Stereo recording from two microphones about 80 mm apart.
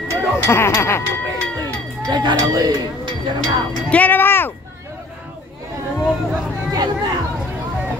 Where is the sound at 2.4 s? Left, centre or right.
Right.